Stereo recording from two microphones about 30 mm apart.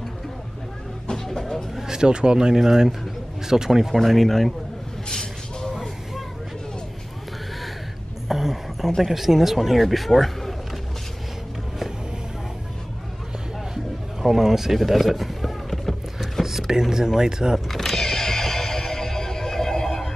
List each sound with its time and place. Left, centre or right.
1.1 s vehicle: centre
1.9 s a man's voice: right
2.5 s speech: centre
3.9 s speech: centre
5.1 s vehicle: centre
8.3 s a sound: centre
9.0 s speech: centre
14.2 s speech: centre
14.8 s run: centre
16.4 s a sound: centre
16.7 s speech: centre
17.6 s music: centre